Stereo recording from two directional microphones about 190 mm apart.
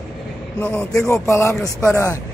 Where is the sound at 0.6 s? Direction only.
5° left (ahead or behind).